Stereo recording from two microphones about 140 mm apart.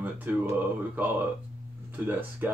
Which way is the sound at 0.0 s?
10° right (ahead or behind).